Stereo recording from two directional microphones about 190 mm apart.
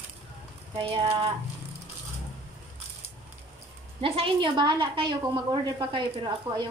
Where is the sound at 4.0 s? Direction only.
30° right (ahead or behind).